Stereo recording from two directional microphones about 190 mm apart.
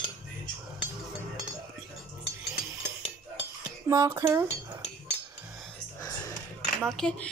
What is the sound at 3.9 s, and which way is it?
Speech, 15° right (ahead or behind).